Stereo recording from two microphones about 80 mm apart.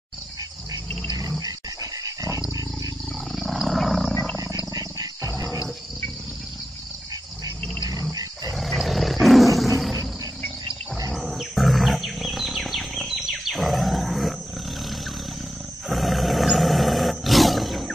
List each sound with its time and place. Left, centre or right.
1.4 s dog: right
3.3 s wild animals: centre
4.7 s wild animals: right
8.5 s roar: centre
11.1 s wild animals: centre
15.9 s roar: centre